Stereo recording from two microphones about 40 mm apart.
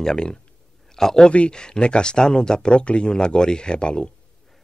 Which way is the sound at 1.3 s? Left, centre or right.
Left.